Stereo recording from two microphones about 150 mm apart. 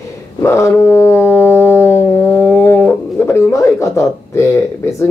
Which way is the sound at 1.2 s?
15° left (ahead or behind).